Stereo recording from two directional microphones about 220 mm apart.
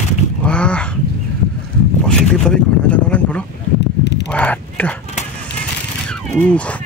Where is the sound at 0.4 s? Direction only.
5° left (ahead or behind).